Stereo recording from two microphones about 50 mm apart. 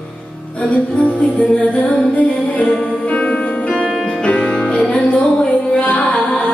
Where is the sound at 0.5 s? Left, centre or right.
Left.